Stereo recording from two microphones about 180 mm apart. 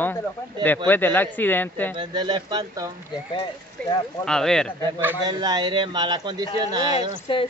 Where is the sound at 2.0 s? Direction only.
25° right (ahead or behind).